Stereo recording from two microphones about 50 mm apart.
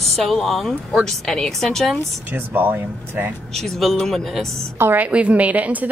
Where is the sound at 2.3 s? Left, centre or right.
Right.